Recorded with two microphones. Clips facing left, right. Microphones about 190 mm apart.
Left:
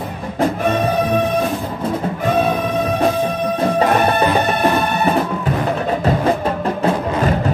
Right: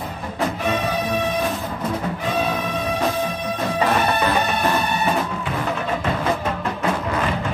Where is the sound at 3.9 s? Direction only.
55° left (ahead or behind).